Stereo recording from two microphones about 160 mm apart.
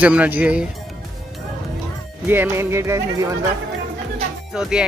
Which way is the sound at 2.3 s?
15° right (ahead or behind).